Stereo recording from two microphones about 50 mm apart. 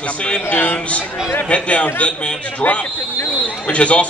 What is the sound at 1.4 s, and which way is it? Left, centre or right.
Speech, left.